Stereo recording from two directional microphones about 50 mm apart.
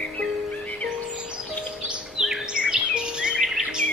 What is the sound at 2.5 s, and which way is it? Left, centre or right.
Bird vocalization, centre.